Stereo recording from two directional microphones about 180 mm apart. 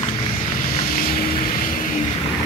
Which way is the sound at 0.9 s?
55° left (ahead or behind).